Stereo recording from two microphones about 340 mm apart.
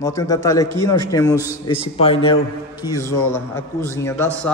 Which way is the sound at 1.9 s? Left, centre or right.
Centre.